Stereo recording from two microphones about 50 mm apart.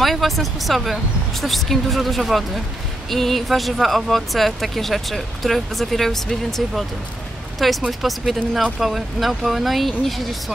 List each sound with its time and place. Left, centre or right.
0.0 s speech: centre